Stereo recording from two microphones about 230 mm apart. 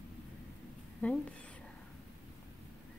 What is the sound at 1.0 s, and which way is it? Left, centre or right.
Speech, centre.